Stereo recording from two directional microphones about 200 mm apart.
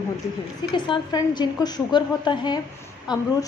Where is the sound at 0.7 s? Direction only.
25° left (ahead or behind).